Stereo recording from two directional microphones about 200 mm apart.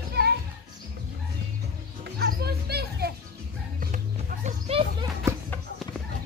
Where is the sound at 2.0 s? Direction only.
55° right (ahead or behind).